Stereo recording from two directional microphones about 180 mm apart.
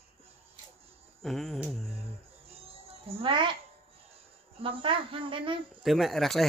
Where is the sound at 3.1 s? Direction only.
30° right (ahead or behind).